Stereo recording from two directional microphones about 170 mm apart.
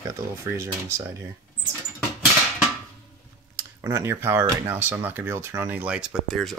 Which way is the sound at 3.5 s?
15° right (ahead or behind).